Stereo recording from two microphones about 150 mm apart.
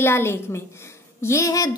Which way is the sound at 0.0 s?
15° left (ahead or behind).